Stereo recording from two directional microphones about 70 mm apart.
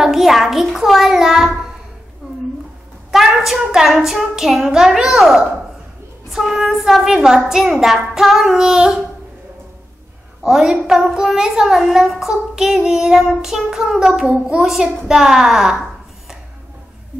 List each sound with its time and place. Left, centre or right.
0.0 s a child's voice: centre
3.1 s a child's voice: centre
10.4 s a child's voice: centre